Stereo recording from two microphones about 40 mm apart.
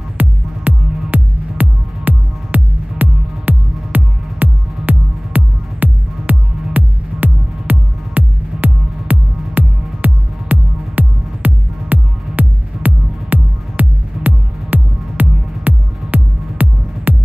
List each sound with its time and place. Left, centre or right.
0.2 s music: right